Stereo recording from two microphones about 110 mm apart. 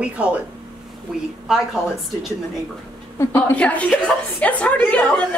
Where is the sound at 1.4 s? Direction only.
5° right (ahead or behind).